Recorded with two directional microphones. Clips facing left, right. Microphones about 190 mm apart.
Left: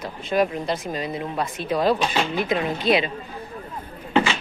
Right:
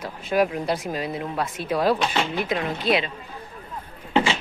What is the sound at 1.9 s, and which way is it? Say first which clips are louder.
Speech: left 1 dB; 10° left (ahead or behind).